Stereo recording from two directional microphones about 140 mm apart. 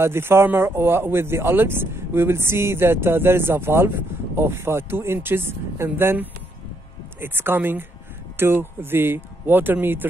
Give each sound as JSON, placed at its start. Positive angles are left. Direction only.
{"t": 0.0, "sound": "speech", "side_deg": -15}